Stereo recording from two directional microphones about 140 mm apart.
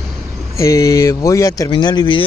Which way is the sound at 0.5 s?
20° left (ahead or behind).